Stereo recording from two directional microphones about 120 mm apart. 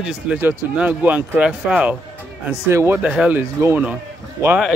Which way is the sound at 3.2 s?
10° right (ahead or behind).